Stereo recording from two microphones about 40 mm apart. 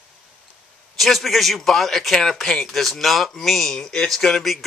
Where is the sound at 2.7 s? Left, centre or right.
Centre.